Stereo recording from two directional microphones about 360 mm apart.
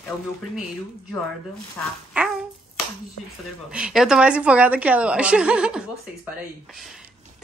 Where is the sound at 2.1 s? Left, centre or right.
Centre.